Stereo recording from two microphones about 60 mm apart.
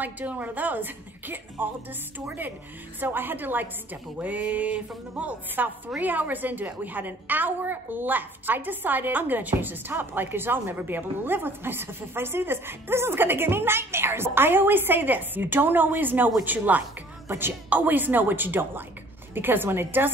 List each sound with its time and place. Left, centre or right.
0.0 s a woman's voice: right
17.3 s a woman's voice: right